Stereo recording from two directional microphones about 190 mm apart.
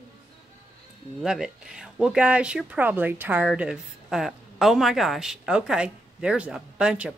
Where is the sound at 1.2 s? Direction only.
5° right (ahead or behind).